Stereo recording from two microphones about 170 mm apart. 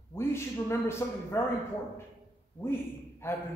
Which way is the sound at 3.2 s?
15° left (ahead or behind).